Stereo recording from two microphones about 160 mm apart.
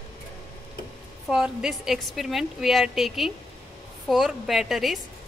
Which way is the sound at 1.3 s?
5° right (ahead or behind).